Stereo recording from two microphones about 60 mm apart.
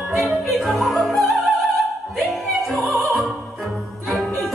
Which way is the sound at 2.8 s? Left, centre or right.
Centre.